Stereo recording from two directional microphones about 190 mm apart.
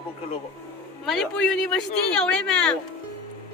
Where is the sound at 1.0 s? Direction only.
Centre (ahead or behind).